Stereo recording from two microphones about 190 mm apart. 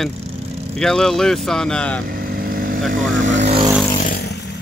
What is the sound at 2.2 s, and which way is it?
Vehicle, 50° right (ahead or behind).